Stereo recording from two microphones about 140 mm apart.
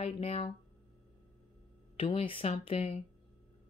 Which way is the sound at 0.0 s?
45° left (ahead or behind).